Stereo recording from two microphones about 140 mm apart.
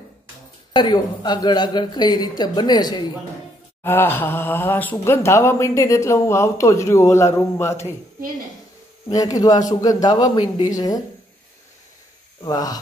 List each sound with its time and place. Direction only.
0.7 s speech: 30° left (ahead or behind)
3.8 s speech: 15° left (ahead or behind)
9.1 s speech: 25° left (ahead or behind)
12.4 s speech: 25° left (ahead or behind)